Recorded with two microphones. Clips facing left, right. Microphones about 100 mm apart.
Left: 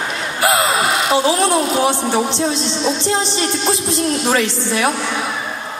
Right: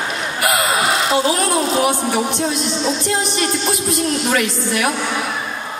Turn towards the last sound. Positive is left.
turn(degrees=25)  # may be behind; listen again after turning